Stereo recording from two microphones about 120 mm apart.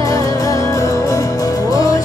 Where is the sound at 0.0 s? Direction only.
30° left (ahead or behind).